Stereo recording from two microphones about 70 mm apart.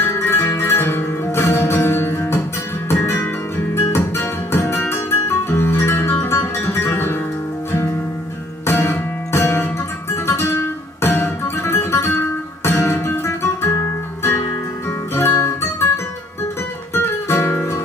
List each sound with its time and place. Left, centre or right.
0.0 s music: left
8.6 s music: left
12.9 s guitar: left
15.1 s music: left
17.3 s music: left